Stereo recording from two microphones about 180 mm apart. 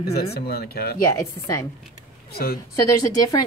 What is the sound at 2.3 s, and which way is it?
Speech, 60° left (ahead or behind).